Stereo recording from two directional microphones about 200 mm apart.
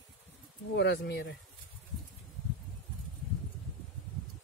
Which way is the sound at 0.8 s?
55° left (ahead or behind).